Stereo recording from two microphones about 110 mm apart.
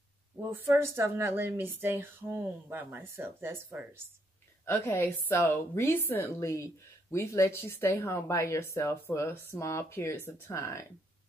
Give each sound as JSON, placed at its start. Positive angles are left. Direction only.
{"t": 0.5, "sound": "speech", "side_deg": -25}
{"t": 4.6, "sound": "a woman's voice", "side_deg": 25}